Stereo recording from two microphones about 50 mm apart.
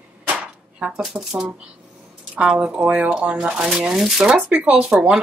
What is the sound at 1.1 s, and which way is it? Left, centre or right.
Speech, centre.